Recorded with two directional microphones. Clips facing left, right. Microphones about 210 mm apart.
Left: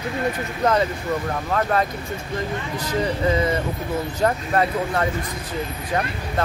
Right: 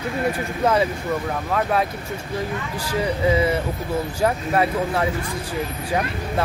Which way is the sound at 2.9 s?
10° right (ahead or behind).